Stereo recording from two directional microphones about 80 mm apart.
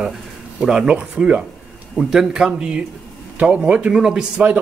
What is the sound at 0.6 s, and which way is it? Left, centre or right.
Speech, centre.